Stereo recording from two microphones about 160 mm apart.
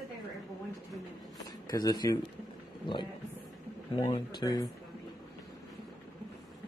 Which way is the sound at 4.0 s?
30° left (ahead or behind).